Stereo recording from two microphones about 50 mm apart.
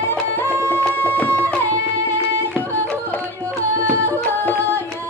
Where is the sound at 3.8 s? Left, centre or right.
Left.